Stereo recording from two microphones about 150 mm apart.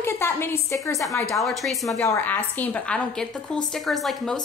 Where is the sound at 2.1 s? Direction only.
10° left (ahead or behind).